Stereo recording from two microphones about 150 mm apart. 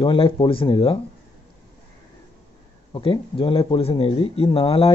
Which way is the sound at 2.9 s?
35° left (ahead or behind).